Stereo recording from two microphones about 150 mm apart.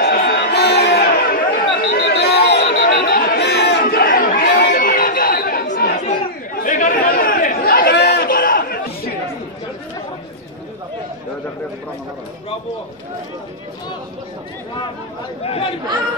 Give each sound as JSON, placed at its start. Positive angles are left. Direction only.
{"t": 0.0, "sound": "a sound", "side_deg": 90}
{"t": 6.5, "sound": "chatter", "side_deg": 65}
{"t": 15.4, "sound": "speech", "side_deg": 40}